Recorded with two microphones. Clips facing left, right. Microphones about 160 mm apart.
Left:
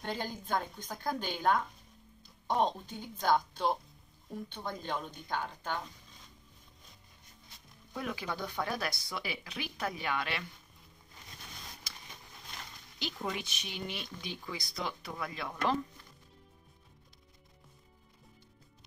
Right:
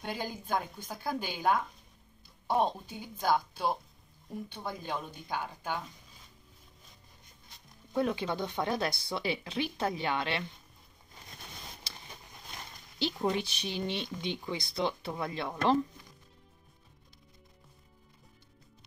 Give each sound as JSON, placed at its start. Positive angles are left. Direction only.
{"t": 0.0, "sound": "a woman's voice", "side_deg": -10}
{"t": 7.9, "sound": "speech", "side_deg": -30}
{"t": 11.9, "sound": "a sound", "side_deg": -30}
{"t": 13.0, "sound": "speech", "side_deg": -30}